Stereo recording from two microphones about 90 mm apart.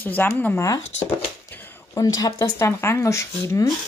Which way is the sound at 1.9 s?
40° left (ahead or behind).